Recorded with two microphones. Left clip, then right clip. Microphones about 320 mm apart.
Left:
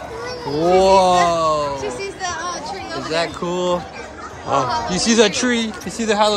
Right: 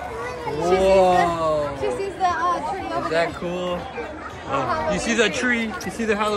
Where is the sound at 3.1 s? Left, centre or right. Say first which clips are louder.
Left 3 dB; centre.